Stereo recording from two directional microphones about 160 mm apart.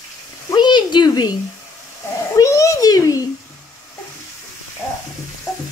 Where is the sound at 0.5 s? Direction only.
30° left (ahead or behind).